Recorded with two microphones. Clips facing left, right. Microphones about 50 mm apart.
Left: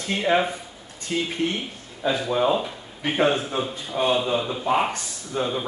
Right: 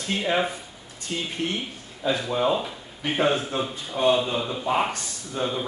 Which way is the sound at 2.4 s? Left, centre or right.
Centre.